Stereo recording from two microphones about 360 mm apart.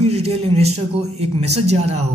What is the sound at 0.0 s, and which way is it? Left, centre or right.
A woman's voice, centre.